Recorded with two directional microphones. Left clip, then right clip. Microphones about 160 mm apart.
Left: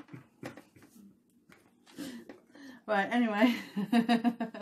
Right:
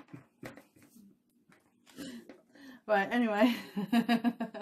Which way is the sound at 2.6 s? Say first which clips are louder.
Right 1 dB; 25° right (ahead or behind).